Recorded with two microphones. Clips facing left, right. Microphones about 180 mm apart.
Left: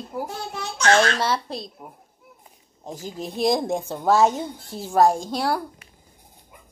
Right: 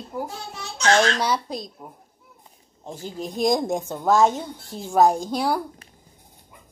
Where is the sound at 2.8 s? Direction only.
40° left (ahead or behind).